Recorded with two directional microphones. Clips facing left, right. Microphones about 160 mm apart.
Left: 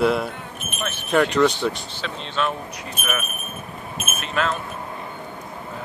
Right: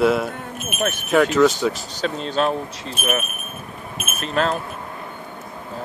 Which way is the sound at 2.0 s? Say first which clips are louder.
Right 5 dB; 40° right (ahead or behind).